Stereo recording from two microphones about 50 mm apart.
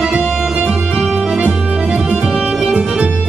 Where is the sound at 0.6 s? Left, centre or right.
Right.